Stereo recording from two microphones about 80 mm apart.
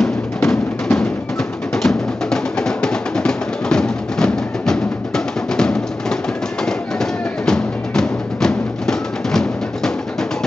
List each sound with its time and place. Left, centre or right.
0.0 s music: centre